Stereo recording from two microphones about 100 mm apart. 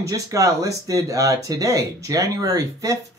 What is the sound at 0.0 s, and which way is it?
Speech, 35° right (ahead or behind).